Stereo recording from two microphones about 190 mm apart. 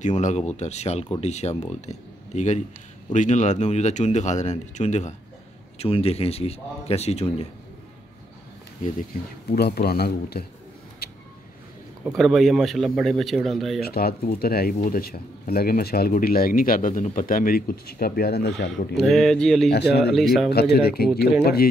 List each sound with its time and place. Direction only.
0.0 s speech: 40° left (ahead or behind)
9.5 s speech: 55° left (ahead or behind)
11.0 s vehicle: 55° left (ahead or behind)
12.2 s speech: centre (ahead or behind)
13.7 s speech: 55° left (ahead or behind)
18.9 s speech: centre (ahead or behind)
19.7 s speech: 60° left (ahead or behind)
20.0 s speech: centre (ahead or behind)
20.5 s speech: 55° left (ahead or behind)